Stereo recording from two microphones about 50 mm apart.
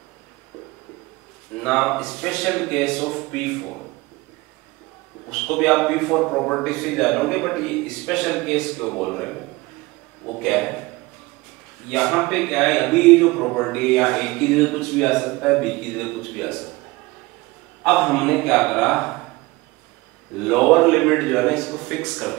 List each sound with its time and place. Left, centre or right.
1.6 s a man's voice: centre
5.3 s a man's voice: centre
11.9 s a man's voice: centre
17.8 s a man's voice: centre
20.3 s a man's voice: centre